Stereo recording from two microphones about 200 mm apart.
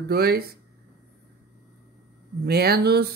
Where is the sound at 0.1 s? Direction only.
50° right (ahead or behind).